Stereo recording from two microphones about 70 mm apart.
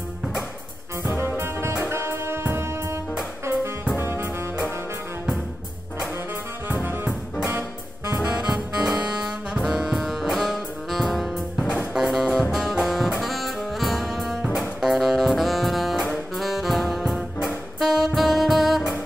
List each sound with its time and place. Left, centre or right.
1.0 s music: right
6.7 s music: right
8.2 s saxophone: centre
11.9 s music: centre
13.2 s saxophone: centre